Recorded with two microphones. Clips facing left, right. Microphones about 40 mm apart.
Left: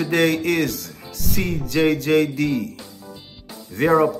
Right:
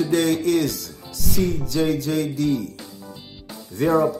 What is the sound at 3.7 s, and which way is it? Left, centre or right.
Speech, left.